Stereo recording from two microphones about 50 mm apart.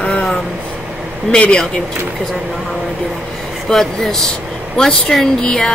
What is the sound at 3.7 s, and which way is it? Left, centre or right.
Speech, centre.